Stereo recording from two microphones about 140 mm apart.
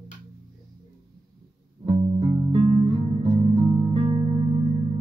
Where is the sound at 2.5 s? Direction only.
45° right (ahead or behind).